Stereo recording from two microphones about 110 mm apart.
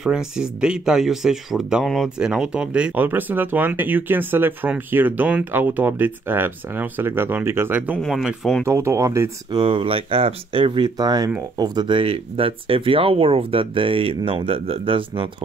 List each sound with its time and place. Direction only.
0.0 s speech: 5° right (ahead or behind)
8.0 s speech: 5° right (ahead or behind)
8.6 s speech: 25° right (ahead or behind)
9.5 s speech: 50° right (ahead or behind)
12.0 s speech: 55° right (ahead or behind)